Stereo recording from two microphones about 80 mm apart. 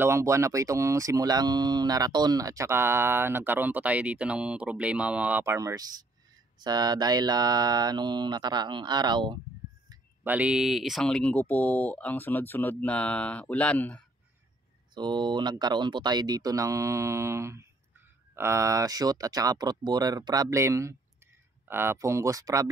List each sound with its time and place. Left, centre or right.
0.0 s speech: right; by 5.4 s centre
5.4 s speech: right
6.6 s mantra: right
10.2 s speech: centre
11.1 s speech: centre
15.0 s speech: right
21.9 s speech: right